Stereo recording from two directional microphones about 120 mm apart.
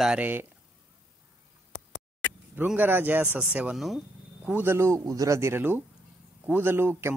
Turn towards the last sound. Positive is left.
turn(degrees=-20)  # may be behind; listen again after turning